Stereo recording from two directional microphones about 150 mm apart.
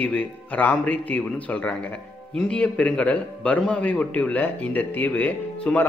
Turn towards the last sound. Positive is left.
turn(degrees=10)  # may be behind; listen again after turning